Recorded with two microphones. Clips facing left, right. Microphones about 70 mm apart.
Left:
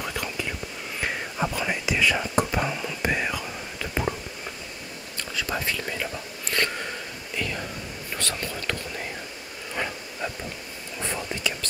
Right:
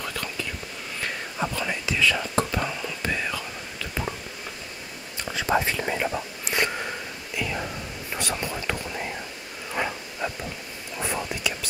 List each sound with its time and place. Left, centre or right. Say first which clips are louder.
0.0 s whispering: left 1 dB; centre
5.3 s whispering: right 5 dB; right
9.8 s a sound: right 2 dB; centre
11.0 s whispering: right 2 dB; centre